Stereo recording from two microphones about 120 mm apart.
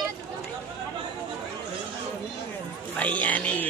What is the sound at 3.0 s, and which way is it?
Speech, 10° left (ahead or behind).